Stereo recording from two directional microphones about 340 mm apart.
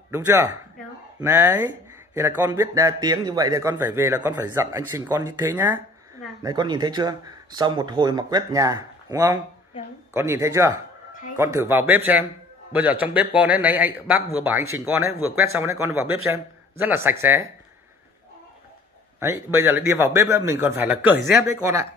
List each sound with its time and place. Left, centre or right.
0.1 s speech: centre
9.8 s a sound: centre
10.1 s speech: centre
15.1 s speech: right
15.5 s speech: centre
19.1 s speech: centre